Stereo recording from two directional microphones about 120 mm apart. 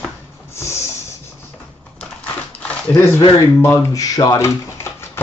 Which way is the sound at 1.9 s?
10° left (ahead or behind).